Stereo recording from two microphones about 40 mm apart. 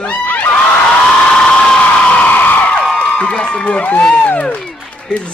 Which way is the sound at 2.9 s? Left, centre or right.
Left.